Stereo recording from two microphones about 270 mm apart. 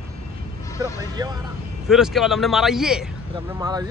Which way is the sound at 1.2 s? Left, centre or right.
Centre.